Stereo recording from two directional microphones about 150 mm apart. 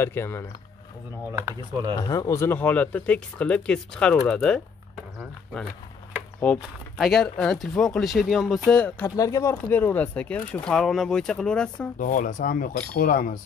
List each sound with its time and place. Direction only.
0.0 s speech: 15° left (ahead or behind)
2.0 s speech: 25° left (ahead or behind); by 4.6 s 5° left (ahead or behind)
6.4 s speech: 10° left (ahead or behind)
8.6 s speech: 10° left (ahead or behind)
9.1 s speech: 20° left (ahead or behind); by 11.9 s 5° left (ahead or behind)
12.0 s speech: 60° left (ahead or behind)